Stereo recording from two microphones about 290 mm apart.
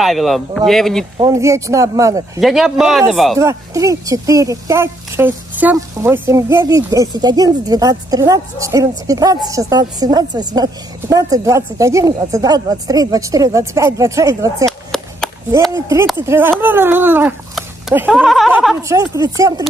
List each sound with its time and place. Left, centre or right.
0.0 s speech: centre
1.1 s speech: centre
3.3 s speech: centre
14.7 s a sound: centre
15.7 s speech: centre